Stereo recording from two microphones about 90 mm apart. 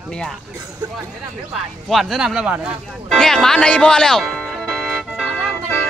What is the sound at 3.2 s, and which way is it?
Speech, 5° left (ahead or behind).